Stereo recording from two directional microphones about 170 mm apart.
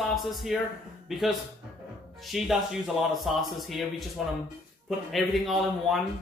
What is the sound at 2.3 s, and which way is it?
Speech, centre (ahead or behind).